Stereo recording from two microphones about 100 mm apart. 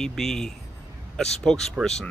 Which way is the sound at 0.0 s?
5° left (ahead or behind).